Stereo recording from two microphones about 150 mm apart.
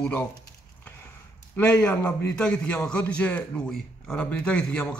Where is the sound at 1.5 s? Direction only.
10° left (ahead or behind).